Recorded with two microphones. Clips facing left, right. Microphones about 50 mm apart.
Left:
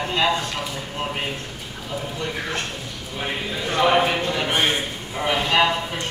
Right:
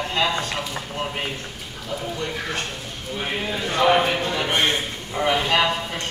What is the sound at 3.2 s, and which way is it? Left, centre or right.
Speech, centre.